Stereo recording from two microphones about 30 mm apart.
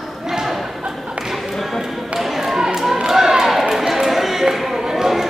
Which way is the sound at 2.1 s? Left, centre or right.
Centre.